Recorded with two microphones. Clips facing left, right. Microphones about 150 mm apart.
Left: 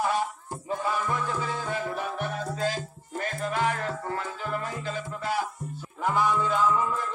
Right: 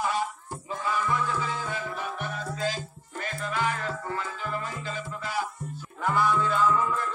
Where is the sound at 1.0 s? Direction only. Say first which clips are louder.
Right 1 dB; 45° left (ahead or behind).